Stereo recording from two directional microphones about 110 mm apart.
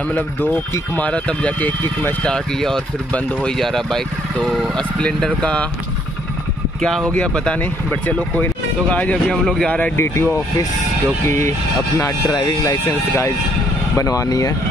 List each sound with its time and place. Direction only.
0.9 s speech: 10° left (ahead or behind)
6.8 s speech: 5° left (ahead or behind)
9.9 s speech: 25° left (ahead or behind)